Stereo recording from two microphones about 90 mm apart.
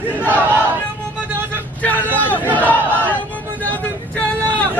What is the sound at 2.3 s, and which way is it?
Speech, 20° right (ahead or behind).